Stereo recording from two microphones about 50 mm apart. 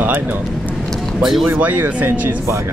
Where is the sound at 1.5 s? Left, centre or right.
Right.